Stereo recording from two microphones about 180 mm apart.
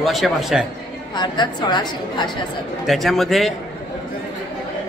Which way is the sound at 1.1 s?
25° left (ahead or behind).